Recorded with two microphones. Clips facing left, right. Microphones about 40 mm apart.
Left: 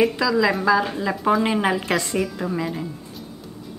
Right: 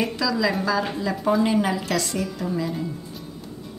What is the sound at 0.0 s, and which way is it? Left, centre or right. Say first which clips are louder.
A woman's voice: left 4 dB; centre.